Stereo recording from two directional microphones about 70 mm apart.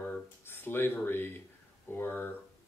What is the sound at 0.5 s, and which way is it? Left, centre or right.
Speech, left.